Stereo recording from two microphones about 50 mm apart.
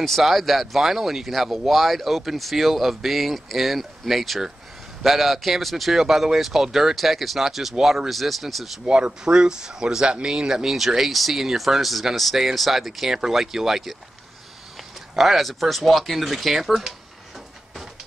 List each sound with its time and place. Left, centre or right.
0.0 s speech: centre
5.9 s speech: centre
8.8 s speech: centre
15.1 s speech: centre